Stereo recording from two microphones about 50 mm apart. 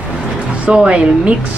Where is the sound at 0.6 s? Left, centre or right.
Centre.